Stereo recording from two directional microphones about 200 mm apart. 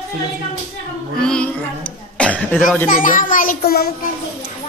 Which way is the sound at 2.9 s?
40° left (ahead or behind).